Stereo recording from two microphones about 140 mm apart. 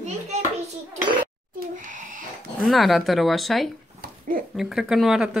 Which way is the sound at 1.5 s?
75° right (ahead or behind).